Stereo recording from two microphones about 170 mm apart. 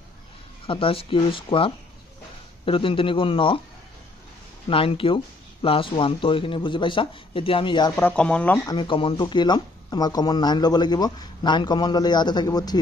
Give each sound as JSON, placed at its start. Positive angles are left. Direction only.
{"t": 0.7, "sound": "speech", "side_deg": 30}
{"t": 4.6, "sound": "speech", "side_deg": 30}
{"t": 7.9, "sound": "speech", "side_deg": 10}
{"t": 8.6, "sound": "speech", "side_deg": 25}